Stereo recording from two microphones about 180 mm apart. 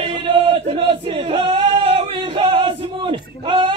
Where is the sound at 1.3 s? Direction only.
30° right (ahead or behind).